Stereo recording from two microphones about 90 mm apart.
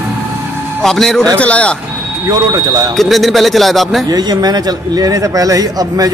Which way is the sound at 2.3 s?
45° right (ahead or behind).